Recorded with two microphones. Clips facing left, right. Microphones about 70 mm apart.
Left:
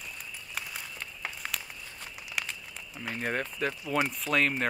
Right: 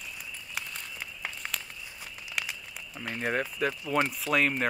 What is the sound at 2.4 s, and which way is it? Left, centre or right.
Crumpling, centre.